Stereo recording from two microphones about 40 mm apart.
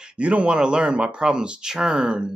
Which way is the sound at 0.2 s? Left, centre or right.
Right.